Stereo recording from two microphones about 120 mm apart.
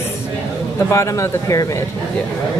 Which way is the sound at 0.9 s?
25° left (ahead or behind).